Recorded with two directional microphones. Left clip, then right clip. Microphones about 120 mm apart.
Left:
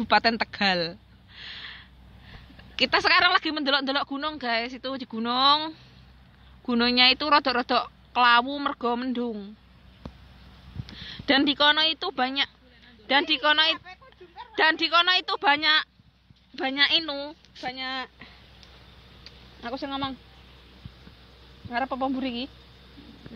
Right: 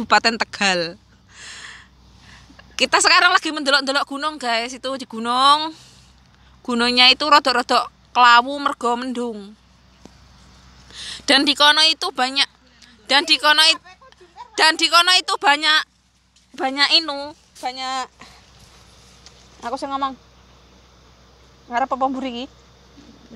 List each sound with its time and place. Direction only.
0.0 s a sound: 45° right (ahead or behind)
2.5 s speech: 75° right (ahead or behind); by 9.5 s 40° right (ahead or behind)
11.0 s speech: 35° right (ahead or behind)
16.7 s a woman's voice: 80° right; by 18.3 s 55° right (ahead or behind)
19.6 s speech: 90° right
21.6 s speech: 90° right